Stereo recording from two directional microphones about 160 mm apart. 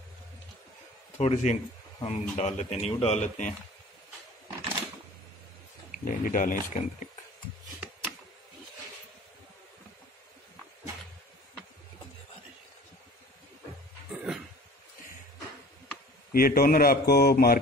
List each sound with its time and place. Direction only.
1.1 s speech: 45° left (ahead or behind)
5.9 s speech: 55° left (ahead or behind)
14.1 s a sound: centre (ahead or behind)
16.3 s speech: 65° left (ahead or behind)